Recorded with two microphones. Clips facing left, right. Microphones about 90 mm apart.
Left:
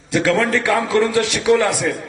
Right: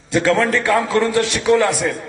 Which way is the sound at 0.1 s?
35° right (ahead or behind).